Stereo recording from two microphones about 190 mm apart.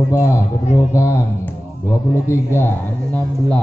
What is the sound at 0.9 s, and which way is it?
A man's voice, 15° left (ahead or behind).